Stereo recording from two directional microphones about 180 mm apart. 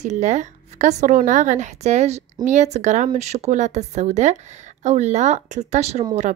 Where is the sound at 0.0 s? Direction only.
40° right (ahead or behind).